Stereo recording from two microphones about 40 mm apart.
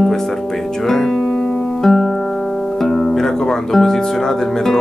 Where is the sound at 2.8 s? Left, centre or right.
Centre.